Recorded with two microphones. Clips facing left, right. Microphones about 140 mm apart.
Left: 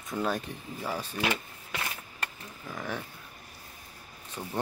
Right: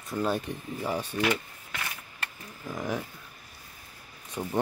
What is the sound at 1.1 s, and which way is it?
Speech, 20° left (ahead or behind).